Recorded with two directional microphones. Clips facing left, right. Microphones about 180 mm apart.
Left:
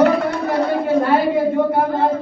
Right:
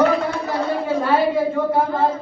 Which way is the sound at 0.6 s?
60° left (ahead or behind).